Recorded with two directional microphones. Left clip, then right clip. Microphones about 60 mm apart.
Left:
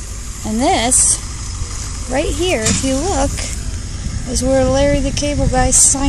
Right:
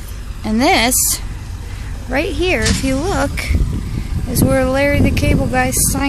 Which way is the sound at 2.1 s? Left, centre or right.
Centre.